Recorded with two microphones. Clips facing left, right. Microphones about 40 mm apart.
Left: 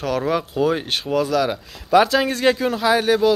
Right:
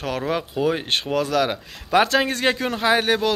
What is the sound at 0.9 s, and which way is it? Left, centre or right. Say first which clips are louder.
A man's voice: left 1 dB; right.